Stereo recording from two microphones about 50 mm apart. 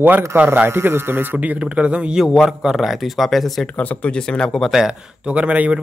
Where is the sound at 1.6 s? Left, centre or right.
Right.